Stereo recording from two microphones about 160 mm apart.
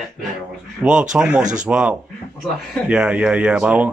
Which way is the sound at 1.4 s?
50° right (ahead or behind).